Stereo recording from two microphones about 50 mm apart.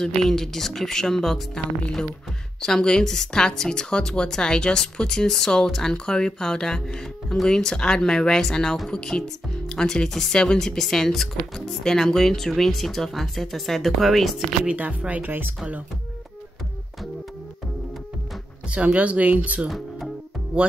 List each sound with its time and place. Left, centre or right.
0.0 s speech: centre
14.7 s speech: right
18.7 s speech: right